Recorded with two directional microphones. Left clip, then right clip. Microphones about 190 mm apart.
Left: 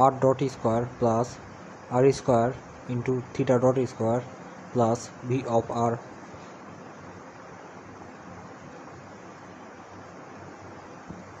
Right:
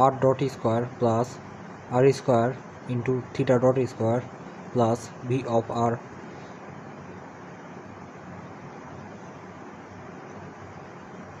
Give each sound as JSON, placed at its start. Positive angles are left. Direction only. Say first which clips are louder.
{"t": 0.0, "sound": "speech", "louder": "even", "side_deg": 0}